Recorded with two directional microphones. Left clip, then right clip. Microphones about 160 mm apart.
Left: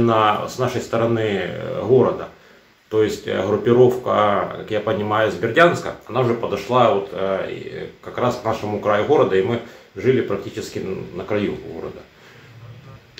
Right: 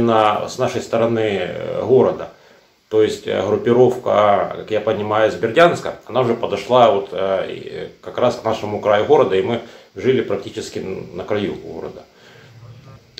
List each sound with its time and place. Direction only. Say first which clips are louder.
0.0 s speech: right 2 dB; 15° left (ahead or behind)